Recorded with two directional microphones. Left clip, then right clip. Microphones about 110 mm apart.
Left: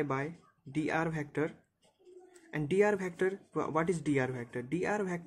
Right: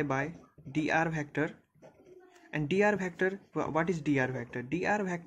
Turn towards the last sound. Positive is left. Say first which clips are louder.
# right 2 dB
turn(degrees=10)  # may be behind; listen again after turning